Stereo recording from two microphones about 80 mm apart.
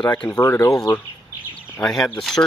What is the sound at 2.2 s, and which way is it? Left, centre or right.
Speech, centre.